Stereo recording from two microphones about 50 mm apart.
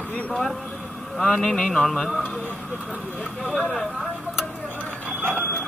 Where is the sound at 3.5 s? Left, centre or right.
Centre.